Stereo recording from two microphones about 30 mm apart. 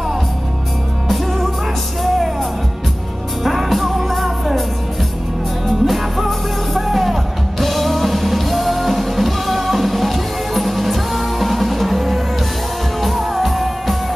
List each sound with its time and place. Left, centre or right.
1.0 s music: centre
3.4 s music: centre
5.7 s music: centre